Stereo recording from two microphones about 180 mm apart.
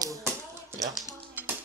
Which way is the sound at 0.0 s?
15° right (ahead or behind).